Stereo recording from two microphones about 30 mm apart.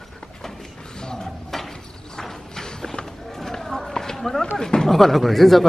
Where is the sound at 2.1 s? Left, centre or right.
Centre.